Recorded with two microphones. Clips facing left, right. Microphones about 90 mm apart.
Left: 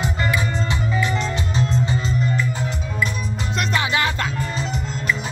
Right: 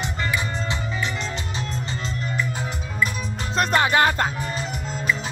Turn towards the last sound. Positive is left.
turn(degrees=-45)  # may be behind; listen again after turning